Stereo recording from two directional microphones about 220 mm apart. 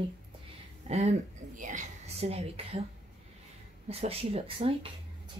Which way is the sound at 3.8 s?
25° right (ahead or behind).